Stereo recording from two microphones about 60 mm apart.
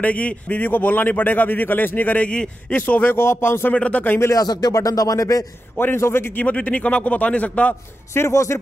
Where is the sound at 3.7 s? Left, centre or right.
Left.